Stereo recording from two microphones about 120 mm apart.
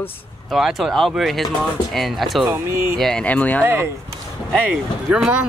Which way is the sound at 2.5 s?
20° right (ahead or behind).